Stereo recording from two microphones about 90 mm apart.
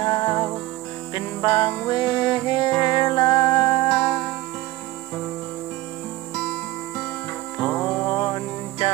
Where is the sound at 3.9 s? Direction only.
10° left (ahead or behind).